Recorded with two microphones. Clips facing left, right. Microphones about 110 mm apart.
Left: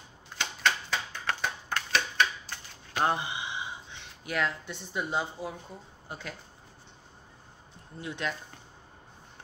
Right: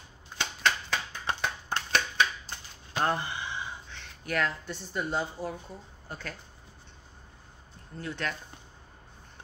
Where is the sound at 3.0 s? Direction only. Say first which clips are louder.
Left 1 dB; 15° left (ahead or behind).